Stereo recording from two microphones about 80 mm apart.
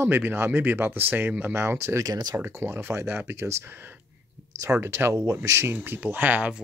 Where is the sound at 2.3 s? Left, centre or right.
Right.